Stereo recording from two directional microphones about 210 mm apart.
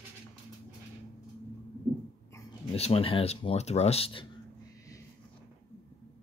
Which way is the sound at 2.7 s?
30° left (ahead or behind).